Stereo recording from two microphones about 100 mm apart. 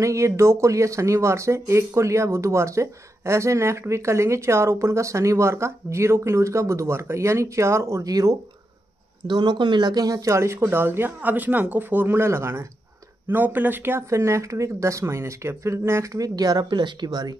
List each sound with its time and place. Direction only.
0.0 s speech: 30° right (ahead or behind)
9.3 s speech: 45° right (ahead or behind)